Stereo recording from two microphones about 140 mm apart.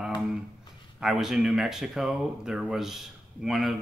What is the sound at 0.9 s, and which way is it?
Speech, 5° right (ahead or behind).